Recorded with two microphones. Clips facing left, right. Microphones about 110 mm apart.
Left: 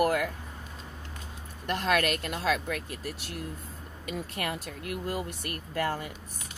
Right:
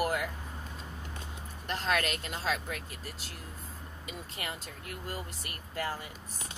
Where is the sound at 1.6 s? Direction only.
55° left (ahead or behind).